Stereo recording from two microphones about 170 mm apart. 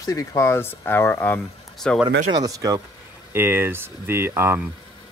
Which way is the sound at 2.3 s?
20° right (ahead or behind).